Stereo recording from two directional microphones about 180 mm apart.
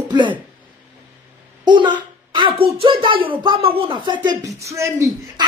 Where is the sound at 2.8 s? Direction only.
30° right (ahead or behind).